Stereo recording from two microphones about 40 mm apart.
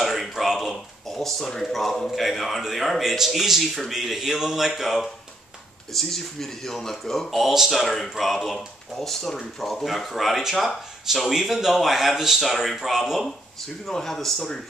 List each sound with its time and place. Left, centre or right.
0.0 s a sound: centre
1.2 s a man's voice: centre
13.8 s speech: centre